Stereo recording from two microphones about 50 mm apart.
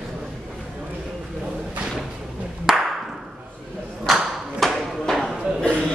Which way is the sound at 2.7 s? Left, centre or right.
Centre.